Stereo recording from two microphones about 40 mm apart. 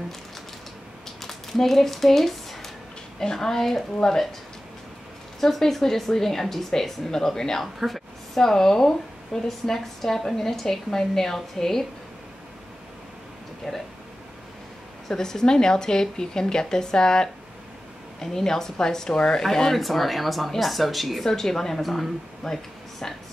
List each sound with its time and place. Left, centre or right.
1.2 s a sound: centre
3.3 s a woman's voice: centre
5.4 s a woman's voice: centre
7.6 s a woman's voice: centre
8.4 s a woman's voice: centre
13.6 s a woman's voice: centre
15.0 s a woman's voice: centre
19.4 s a woman's voice: centre
22.4 s a sound: centre